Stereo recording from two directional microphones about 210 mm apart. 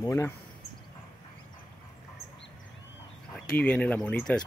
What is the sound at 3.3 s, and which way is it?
Speech, 5° left (ahead or behind).